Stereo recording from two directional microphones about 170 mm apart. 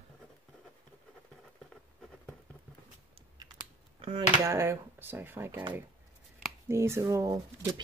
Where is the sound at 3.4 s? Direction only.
25° right (ahead or behind).